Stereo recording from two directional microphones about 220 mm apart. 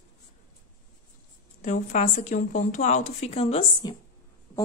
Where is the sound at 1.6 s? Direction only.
35° left (ahead or behind).